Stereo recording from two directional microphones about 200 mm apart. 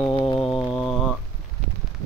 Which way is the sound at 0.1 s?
25° left (ahead or behind).